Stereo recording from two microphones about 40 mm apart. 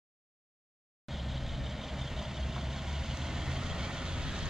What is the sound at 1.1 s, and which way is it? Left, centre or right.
Vehicle, centre.